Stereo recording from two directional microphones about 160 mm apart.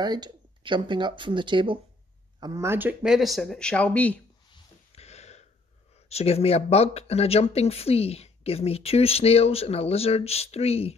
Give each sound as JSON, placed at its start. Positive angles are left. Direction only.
{"t": 0.0, "sound": "speech", "side_deg": -25}
{"t": 2.4, "sound": "speech", "side_deg": -20}
{"t": 4.9, "sound": "a sound", "side_deg": 40}
{"t": 6.0, "sound": "speech", "side_deg": 40}